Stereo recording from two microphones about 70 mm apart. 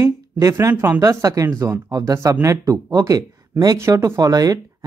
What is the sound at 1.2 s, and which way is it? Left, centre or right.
Speech, right.